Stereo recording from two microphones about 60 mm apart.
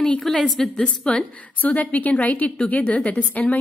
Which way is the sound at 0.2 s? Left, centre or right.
Centre.